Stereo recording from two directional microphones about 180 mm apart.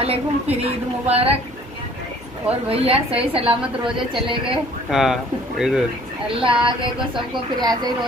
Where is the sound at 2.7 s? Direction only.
30° right (ahead or behind).